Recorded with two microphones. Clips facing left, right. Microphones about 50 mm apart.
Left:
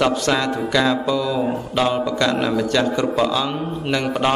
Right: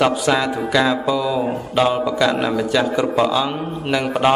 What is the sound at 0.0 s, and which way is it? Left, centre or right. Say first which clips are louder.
A man's voice: right 2 dB; centre.